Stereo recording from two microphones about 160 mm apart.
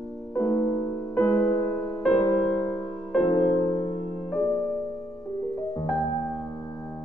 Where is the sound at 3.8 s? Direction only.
50° left (ahead or behind).